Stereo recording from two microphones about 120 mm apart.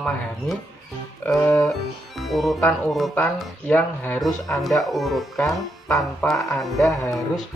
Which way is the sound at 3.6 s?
15° left (ahead or behind).